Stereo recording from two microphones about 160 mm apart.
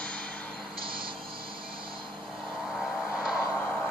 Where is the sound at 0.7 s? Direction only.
30° right (ahead or behind).